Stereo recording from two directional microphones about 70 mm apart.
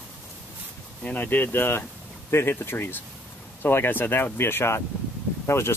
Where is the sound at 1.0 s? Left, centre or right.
Left.